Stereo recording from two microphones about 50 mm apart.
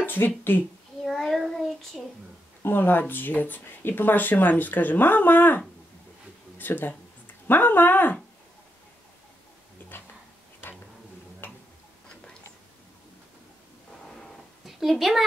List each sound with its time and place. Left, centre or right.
0.0 s a sound: left
1.0 s child singing: centre
2.6 s speech: left
6.6 s speech: left
11.4 s tick-tock: left
14.0 s a sound: centre